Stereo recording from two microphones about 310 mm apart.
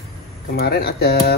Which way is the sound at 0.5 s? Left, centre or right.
Left.